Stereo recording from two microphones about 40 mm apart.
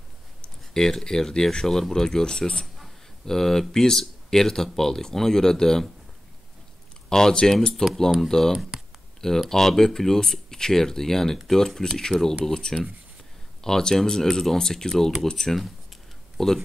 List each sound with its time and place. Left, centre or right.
0.7 s speech: centre
7.1 s speech: centre
7.8 s a sound: centre
8.2 s speech: centre
8.5 s a sound: centre
9.5 s speech: centre